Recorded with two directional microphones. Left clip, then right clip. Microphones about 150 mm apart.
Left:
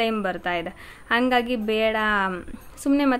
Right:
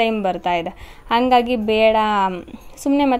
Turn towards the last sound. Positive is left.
turn(degrees=-15)  # may be behind; listen again after turning